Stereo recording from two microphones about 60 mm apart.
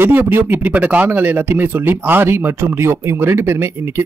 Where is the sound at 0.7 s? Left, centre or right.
Right.